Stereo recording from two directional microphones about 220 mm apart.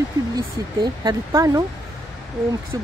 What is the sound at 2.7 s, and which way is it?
Speech, 15° right (ahead or behind).